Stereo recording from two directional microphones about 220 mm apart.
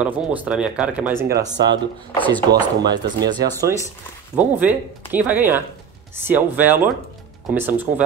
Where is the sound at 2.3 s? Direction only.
15° right (ahead or behind).